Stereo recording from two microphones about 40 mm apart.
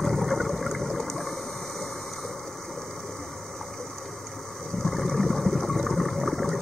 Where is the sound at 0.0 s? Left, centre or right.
Centre.